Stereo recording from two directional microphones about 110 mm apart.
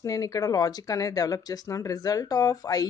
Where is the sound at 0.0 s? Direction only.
30° left (ahead or behind).